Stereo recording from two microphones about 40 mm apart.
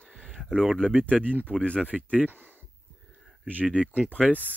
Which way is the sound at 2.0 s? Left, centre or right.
Right.